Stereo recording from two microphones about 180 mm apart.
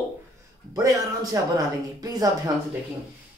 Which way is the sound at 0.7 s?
20° right (ahead or behind).